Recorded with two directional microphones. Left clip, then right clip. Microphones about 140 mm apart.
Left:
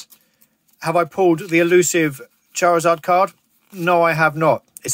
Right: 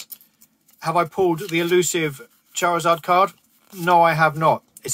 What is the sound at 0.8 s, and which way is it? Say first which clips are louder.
Speech: left 3 dB; 40° left (ahead or behind).